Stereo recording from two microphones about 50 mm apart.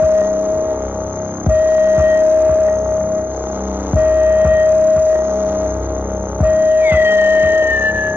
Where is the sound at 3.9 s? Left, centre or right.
Right.